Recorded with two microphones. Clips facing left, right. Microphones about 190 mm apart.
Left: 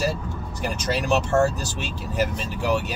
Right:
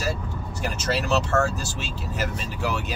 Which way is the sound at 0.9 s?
15° left (ahead or behind).